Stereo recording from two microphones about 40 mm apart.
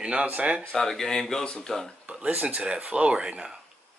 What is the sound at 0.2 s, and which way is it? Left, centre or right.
Speech, right.